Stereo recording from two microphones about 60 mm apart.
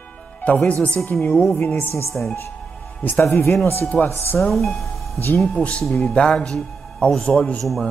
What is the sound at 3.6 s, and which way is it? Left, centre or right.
Speech, left.